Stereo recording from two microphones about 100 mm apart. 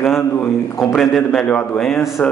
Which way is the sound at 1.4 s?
15° left (ahead or behind).